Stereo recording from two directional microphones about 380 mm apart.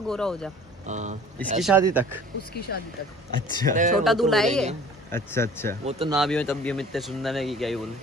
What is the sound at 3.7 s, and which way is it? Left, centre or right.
Speech, centre.